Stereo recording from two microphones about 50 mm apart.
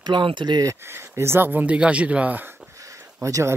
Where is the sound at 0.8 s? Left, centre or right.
Right.